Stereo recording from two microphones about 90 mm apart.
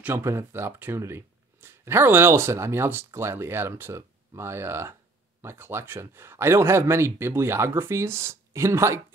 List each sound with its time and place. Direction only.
0.1 s speech: 30° right (ahead or behind)